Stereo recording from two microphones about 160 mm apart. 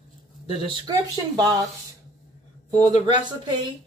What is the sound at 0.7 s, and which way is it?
Speech, 25° right (ahead or behind).